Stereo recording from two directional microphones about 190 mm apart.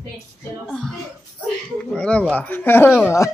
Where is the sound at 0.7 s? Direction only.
Centre (ahead or behind).